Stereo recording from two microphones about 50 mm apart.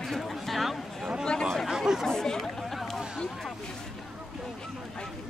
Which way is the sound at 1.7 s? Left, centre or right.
Centre.